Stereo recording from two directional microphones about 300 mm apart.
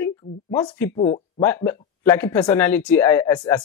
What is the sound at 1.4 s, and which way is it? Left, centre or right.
Speech, centre.